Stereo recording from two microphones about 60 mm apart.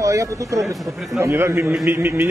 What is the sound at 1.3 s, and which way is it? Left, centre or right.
Speech, right.